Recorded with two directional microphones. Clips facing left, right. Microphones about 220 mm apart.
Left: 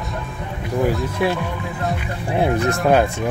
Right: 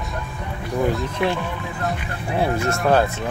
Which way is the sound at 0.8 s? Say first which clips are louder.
Left 2 dB; centre (ahead or behind).